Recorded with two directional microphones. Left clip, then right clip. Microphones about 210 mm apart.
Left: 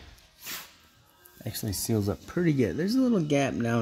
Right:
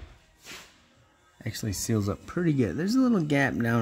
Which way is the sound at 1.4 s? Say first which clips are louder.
Even; 5° right (ahead or behind).